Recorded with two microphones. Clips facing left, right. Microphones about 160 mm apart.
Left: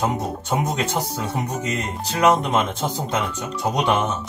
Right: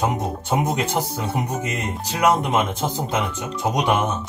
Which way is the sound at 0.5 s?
15° right (ahead or behind).